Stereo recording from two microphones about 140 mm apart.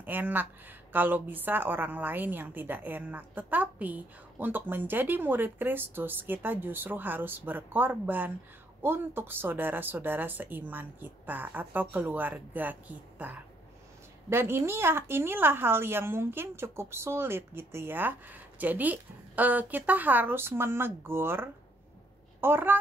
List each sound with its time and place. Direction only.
0.0 s a woman's voice: 15° right (ahead or behind)